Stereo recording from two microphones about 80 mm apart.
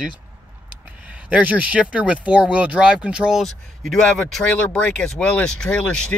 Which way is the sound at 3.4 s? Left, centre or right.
Centre.